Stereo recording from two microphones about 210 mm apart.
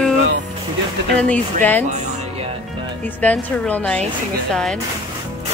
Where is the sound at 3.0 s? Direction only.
5° left (ahead or behind).